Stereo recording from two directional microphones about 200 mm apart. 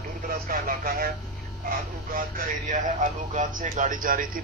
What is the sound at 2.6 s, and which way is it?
Speech, 40° right (ahead or behind).